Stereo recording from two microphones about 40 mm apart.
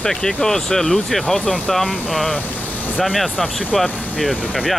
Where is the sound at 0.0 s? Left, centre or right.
Centre.